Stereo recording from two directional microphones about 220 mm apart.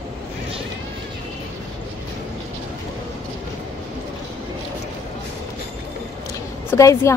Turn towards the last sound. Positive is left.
turn(degrees=15)  # may be behind; listen again after turning